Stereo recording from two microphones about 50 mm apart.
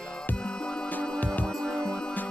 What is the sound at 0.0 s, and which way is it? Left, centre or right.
Music, centre.